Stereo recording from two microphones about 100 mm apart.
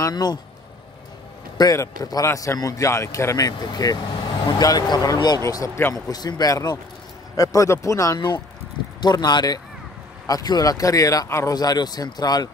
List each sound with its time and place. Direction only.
0.0 s speech: 45° left (ahead or behind)
1.6 s speech: 40° left (ahead or behind)
9.0 s speech: 45° left (ahead or behind)
11.5 s speech: 40° left (ahead or behind)